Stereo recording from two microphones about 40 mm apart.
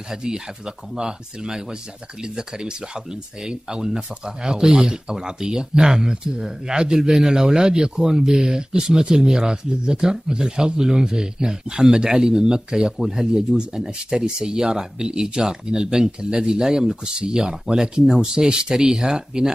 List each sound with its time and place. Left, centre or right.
0.1 s speech: centre